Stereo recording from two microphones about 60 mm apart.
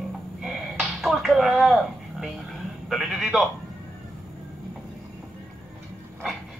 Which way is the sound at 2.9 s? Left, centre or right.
Centre.